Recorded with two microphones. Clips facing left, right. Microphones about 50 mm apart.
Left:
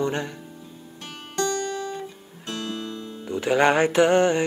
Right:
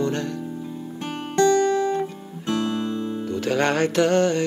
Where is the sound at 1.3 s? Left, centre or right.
Right.